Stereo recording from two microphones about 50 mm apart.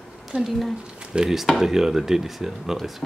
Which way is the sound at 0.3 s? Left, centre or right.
Centre.